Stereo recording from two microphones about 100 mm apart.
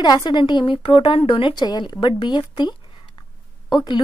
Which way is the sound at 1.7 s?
45° left (ahead or behind).